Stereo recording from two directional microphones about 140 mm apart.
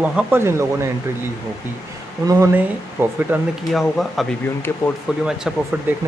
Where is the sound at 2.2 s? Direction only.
25° right (ahead or behind).